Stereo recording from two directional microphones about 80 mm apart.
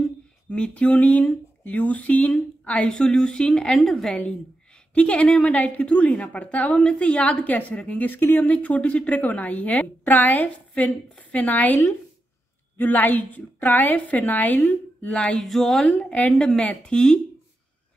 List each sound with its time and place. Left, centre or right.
0.5 s a woman's voice: centre